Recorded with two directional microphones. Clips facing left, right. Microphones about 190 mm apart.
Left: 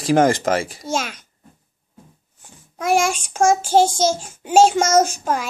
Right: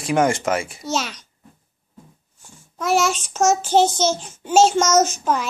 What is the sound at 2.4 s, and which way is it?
Babbling, 60° left (ahead or behind).